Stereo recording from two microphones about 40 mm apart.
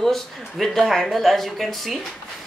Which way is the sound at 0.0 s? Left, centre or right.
Centre.